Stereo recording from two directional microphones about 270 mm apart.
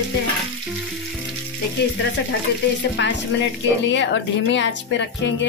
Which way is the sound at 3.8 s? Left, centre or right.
Left.